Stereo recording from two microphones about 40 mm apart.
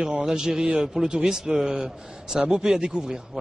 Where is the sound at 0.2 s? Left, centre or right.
Centre.